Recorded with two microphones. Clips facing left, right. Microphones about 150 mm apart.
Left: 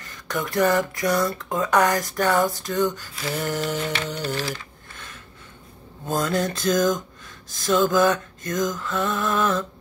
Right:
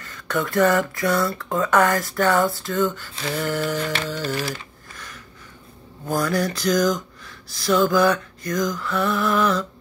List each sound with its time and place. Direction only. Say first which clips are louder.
0.0 s speech: right 3 dB; 15° left (ahead or behind)
3.3 s music: right 2 dB; 20° left (ahead or behind)
4.1 s speech: right 2 dB; 15° left (ahead or behind)
4.5 s a sound: right 1 dB; 25° left (ahead or behind)
6.0 s music: right 1 dB; 20° left (ahead or behind)